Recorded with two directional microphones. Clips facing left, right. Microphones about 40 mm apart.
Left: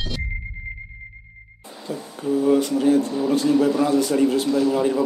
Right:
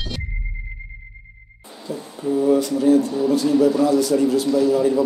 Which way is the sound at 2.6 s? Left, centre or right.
Left.